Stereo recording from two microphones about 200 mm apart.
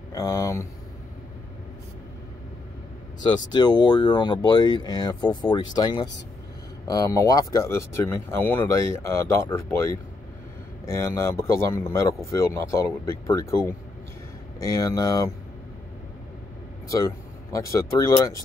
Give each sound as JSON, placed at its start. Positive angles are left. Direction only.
{"t": 0.1, "sound": "a sound", "side_deg": 15}
{"t": 3.5, "sound": "speech", "side_deg": 20}
{"t": 16.9, "sound": "speech", "side_deg": 15}